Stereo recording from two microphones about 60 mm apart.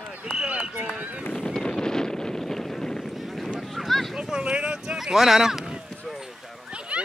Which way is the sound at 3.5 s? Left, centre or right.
Centre.